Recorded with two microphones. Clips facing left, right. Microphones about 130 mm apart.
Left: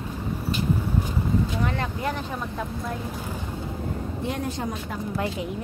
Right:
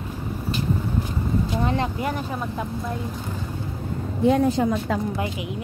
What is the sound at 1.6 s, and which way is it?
Speech, 25° right (ahead or behind).